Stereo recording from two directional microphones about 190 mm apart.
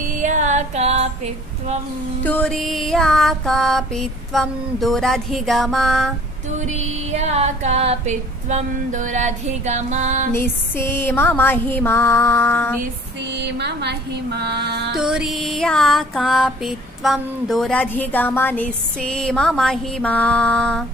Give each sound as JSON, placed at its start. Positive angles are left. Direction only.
{"t": 0.2, "sound": "music", "side_deg": -40}
{"t": 2.2, "sound": "music", "side_deg": 5}
{"t": 6.6, "sound": "female singing", "side_deg": -35}
{"t": 10.3, "sound": "music", "side_deg": 10}
{"t": 13.2, "sound": "a sound", "side_deg": -65}
{"t": 15.0, "sound": "music", "side_deg": -5}